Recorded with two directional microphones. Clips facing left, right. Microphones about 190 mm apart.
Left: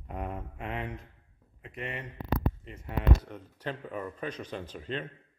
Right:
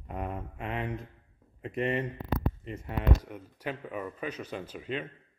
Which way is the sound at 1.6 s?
30° right (ahead or behind).